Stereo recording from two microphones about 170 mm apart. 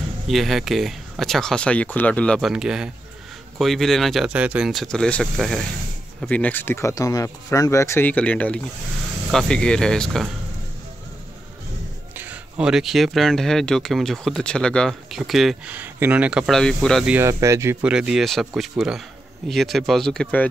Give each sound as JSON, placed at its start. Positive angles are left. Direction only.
{"t": 0.3, "sound": "speech", "side_deg": 0}
{"t": 12.2, "sound": "speech", "side_deg": -5}
{"t": 17.1, "sound": "speech", "side_deg": -15}
{"t": 17.9, "sound": "speech", "side_deg": -5}